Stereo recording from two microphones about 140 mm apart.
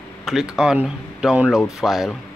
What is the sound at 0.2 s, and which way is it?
Speech, centre (ahead or behind).